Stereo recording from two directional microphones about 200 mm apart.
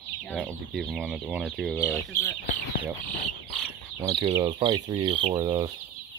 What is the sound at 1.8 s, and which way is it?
Speech, 10° left (ahead or behind).